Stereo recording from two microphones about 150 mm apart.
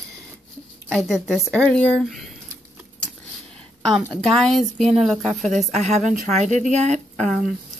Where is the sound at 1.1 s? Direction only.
Centre (ahead or behind).